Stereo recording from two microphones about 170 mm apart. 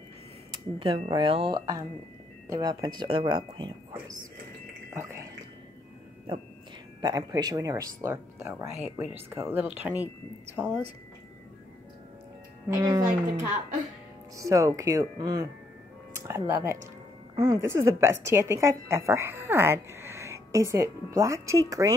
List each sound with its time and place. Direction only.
0.5 s speech: 30° right (ahead or behind)
7.0 s a woman's voice: 20° right (ahead or behind)
12.6 s a woman's voice: 20° right (ahead or behind)
14.3 s a woman's voice: 20° right (ahead or behind)